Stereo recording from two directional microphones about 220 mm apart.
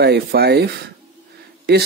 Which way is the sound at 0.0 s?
45° right (ahead or behind).